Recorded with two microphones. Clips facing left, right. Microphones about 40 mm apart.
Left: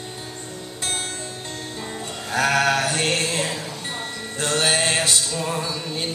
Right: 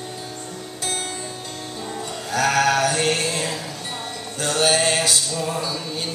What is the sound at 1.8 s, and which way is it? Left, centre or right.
Music, centre.